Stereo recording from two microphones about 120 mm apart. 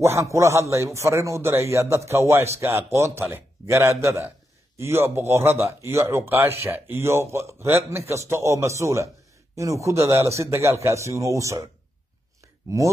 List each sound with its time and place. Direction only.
0.0 s speech: 25° right (ahead or behind)